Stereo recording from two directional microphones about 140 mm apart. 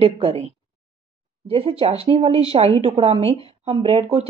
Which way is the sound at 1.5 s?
40° right (ahead or behind).